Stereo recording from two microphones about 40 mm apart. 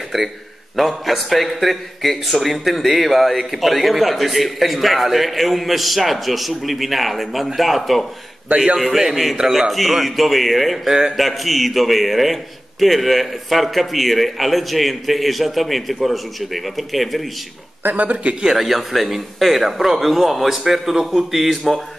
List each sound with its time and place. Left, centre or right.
0.1 s a man's voice: centre
17.8 s speech: right
18.4 s a man's voice: centre